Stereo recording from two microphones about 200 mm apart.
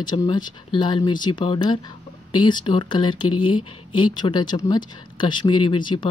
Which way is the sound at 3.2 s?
90° left.